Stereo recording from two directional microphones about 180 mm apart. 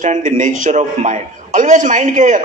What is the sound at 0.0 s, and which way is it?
A man's voice, 45° right (ahead or behind).